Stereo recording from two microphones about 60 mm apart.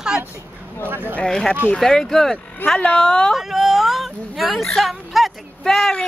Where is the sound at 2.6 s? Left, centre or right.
Left.